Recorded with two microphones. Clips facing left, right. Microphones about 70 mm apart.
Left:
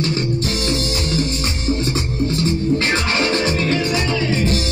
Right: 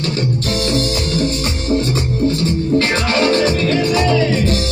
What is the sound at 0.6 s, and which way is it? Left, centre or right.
Music, right.